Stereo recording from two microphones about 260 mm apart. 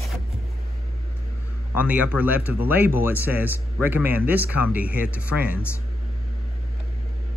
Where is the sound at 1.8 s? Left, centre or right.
Centre.